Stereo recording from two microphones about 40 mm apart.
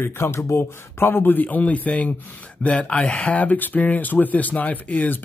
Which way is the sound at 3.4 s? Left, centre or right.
Left.